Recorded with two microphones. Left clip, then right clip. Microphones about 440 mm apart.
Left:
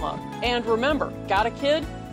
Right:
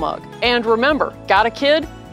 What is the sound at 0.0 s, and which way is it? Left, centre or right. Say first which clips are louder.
Speech: right 8 dB; right.